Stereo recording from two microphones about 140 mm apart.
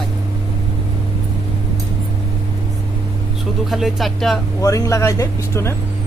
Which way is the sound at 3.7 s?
Centre (ahead or behind).